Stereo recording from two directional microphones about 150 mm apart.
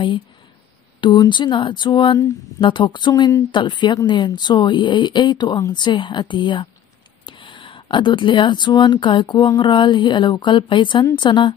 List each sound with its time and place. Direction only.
1.0 s speech: 30° left (ahead or behind)